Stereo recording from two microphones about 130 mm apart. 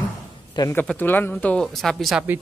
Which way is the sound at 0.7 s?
15° left (ahead or behind).